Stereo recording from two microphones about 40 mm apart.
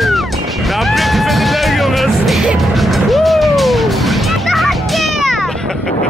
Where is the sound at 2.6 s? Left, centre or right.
Centre.